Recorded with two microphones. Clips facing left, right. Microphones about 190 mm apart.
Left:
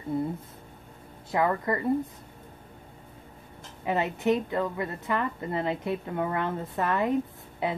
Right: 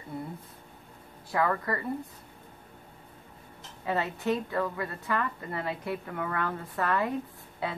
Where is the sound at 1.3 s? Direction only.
20° left (ahead or behind).